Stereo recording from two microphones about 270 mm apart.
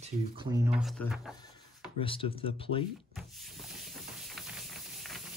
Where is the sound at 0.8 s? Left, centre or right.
Centre.